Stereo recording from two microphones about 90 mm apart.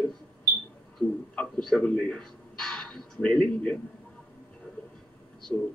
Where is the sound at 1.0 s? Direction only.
15° left (ahead or behind).